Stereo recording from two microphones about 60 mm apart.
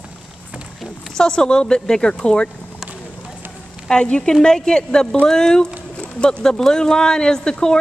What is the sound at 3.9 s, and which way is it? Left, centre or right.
Speech, centre.